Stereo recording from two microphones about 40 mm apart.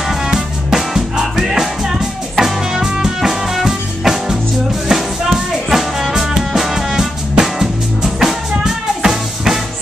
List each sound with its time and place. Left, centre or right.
0.3 s music: centre